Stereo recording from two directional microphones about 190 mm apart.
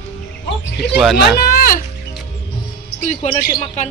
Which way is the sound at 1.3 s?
50° left (ahead or behind).